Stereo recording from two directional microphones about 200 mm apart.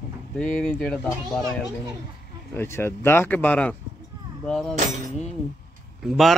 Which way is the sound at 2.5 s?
10° left (ahead or behind).